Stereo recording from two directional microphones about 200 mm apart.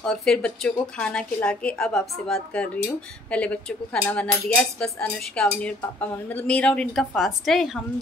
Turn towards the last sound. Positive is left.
turn(degrees=0)  # may be behind; listen again after turning